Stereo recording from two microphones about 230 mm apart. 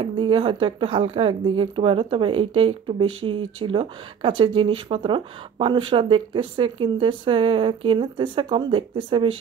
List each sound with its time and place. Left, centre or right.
0.0 s speech: right